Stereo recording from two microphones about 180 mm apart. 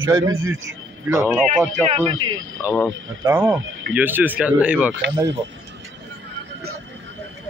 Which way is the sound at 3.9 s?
10° right (ahead or behind).